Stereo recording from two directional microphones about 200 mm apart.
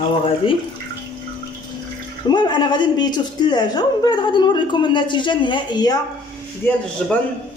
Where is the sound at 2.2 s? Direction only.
20° left (ahead or behind).